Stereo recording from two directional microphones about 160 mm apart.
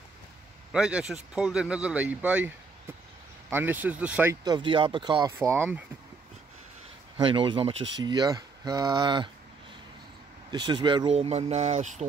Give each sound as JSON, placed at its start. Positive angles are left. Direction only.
{"t": 0.7, "sound": "speech", "side_deg": -5}
{"t": 4.5, "sound": "speech", "side_deg": -30}
{"t": 5.5, "sound": "speech", "side_deg": -10}
{"t": 7.2, "sound": "speech", "side_deg": -30}
{"t": 10.5, "sound": "speech", "side_deg": -30}